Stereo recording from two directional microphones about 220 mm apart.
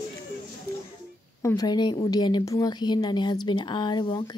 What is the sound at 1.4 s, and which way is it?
A woman's voice, 15° left (ahead or behind).